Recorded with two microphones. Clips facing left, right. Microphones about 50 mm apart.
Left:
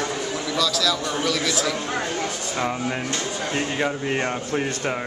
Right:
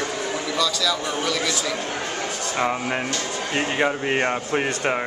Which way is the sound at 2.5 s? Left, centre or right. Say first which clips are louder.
Right 3 dB; centre.